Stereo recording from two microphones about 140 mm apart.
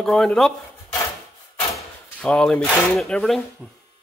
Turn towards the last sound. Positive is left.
turn(degrees=5)  # may be behind; listen again after turning